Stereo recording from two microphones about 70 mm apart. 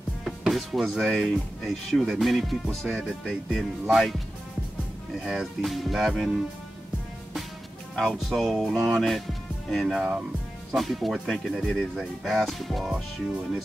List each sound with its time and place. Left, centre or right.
0.2 s music: centre
1.2 s speech: centre
7.9 s speech: centre
9.9 s speech: centre
10.7 s speech: centre